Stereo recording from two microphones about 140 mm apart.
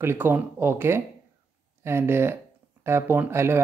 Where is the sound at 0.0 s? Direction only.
15° right (ahead or behind).